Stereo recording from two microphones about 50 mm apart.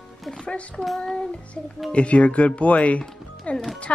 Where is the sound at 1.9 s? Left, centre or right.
Left.